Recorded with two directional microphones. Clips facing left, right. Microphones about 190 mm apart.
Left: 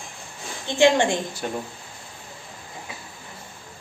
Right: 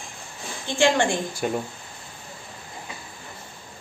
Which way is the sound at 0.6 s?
20° left (ahead or behind).